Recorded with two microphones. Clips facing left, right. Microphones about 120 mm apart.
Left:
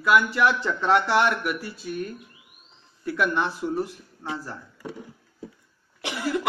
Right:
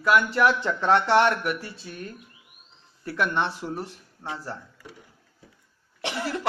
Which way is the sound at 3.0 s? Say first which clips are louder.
Left 1 dB; 35° right (ahead or behind).